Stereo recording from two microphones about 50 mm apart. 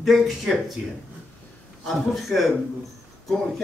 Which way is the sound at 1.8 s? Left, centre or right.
Centre.